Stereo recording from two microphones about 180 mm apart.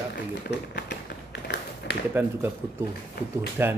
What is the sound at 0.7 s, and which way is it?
Tap, 70° left (ahead or behind).